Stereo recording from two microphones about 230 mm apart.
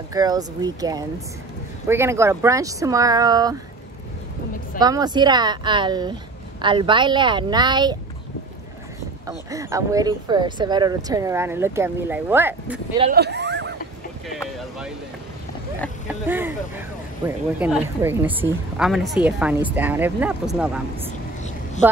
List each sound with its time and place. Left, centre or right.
0.1 s speech: centre
4.7 s speech: centre
9.5 s speech: centre
13.1 s a sound: right
16.1 s speech: centre
17.6 s speech: centre